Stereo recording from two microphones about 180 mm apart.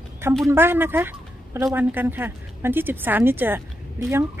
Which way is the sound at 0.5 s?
10° right (ahead or behind).